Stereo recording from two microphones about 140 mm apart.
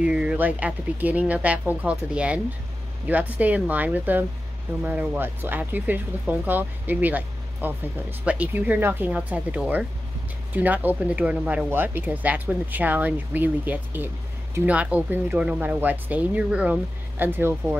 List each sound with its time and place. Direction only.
0.0 s speech: 5° right (ahead or behind)